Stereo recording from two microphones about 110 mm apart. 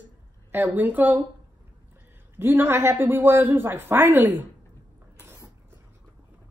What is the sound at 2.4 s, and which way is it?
Speech, 20° right (ahead or behind).